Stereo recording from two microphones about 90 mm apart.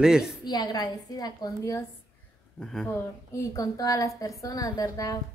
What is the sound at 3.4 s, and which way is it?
A woman's voice, 40° left (ahead or behind).